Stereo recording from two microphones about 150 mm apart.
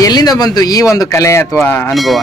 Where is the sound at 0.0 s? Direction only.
25° left (ahead or behind).